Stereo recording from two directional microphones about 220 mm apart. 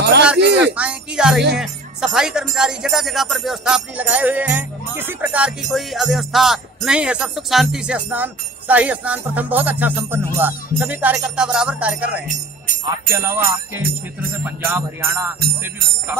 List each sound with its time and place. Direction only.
0.4 s speech: 50° right (ahead or behind)
0.7 s music: 5° right (ahead or behind)
1.6 s speech: centre (ahead or behind)
2.5 s music: 5° right (ahead or behind)
12.3 s speech: 35° right (ahead or behind)
13.1 s music: 10° right (ahead or behind)
14.4 s music: 10° right (ahead or behind)